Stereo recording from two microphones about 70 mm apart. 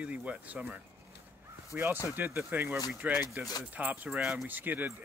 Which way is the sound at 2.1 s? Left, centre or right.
Right.